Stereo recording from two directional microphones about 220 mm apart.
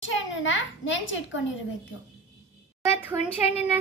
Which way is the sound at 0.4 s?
60° left (ahead or behind).